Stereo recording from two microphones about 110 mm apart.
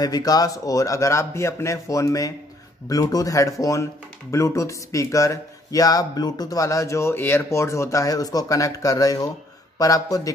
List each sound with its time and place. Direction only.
0.0 s speech: 35° left (ahead or behind)